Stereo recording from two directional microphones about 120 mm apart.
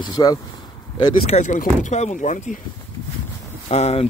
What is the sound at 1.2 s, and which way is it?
Speech, 85° left.